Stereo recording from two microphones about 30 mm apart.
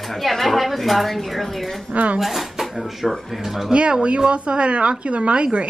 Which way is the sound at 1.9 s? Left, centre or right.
Right.